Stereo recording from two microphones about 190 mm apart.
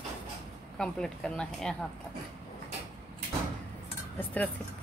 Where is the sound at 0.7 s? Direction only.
5° left (ahead or behind).